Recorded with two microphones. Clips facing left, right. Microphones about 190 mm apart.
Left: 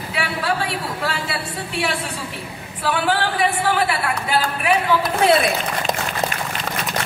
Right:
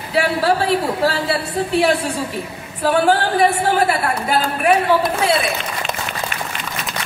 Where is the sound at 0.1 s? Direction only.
35° right (ahead or behind).